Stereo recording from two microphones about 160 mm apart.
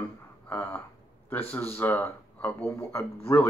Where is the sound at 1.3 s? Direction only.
10° left (ahead or behind).